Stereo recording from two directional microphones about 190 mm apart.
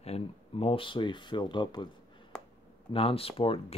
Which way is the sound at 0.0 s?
35° left (ahead or behind).